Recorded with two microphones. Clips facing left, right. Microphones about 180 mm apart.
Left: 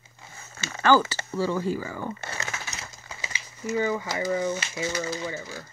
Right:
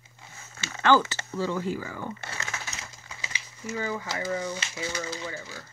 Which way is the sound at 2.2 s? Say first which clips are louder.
Left 3 dB; 40° left (ahead or behind).